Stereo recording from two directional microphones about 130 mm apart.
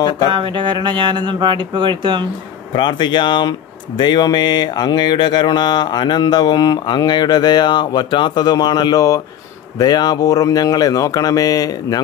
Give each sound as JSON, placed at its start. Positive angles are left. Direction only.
{"t": 0.3, "sound": "speech", "side_deg": -40}
{"t": 2.7, "sound": "speech", "side_deg": 35}